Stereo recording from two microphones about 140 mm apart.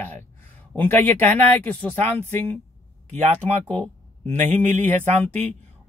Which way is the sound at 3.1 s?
55° right (ahead or behind).